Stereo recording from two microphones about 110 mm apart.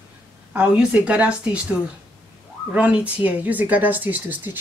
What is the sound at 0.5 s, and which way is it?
Speech, 10° right (ahead or behind).